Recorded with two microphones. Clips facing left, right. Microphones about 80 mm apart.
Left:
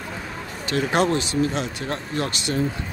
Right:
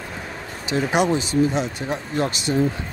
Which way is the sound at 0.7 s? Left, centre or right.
Centre.